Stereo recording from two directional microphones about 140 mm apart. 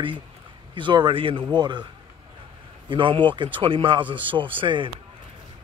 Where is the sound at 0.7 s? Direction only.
35° right (ahead or behind).